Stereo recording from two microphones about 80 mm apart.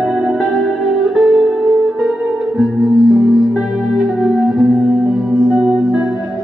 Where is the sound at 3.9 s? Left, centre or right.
Centre.